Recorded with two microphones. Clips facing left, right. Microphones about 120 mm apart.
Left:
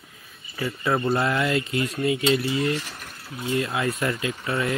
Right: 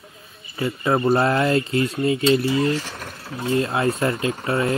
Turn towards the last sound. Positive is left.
turn(degrees=-30)  # may be behind; listen again after turning